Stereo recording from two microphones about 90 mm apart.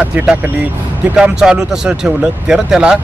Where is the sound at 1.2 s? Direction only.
5° right (ahead or behind).